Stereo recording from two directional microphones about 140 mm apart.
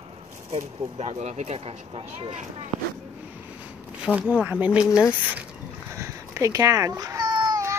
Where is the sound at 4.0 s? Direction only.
10° right (ahead or behind).